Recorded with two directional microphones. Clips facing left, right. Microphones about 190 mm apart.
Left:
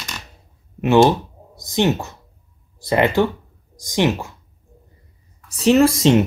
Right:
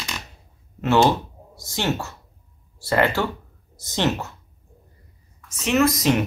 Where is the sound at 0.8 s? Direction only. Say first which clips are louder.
Left 4 dB; 15° left (ahead or behind).